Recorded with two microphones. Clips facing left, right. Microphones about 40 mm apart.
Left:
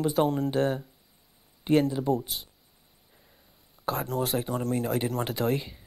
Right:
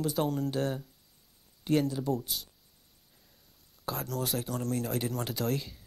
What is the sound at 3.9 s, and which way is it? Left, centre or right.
Speech, left.